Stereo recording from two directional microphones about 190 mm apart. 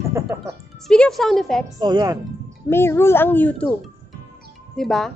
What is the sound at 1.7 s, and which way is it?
Speech, 20° right (ahead or behind).